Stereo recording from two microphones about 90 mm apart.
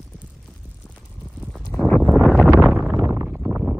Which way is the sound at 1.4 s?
5° left (ahead or behind).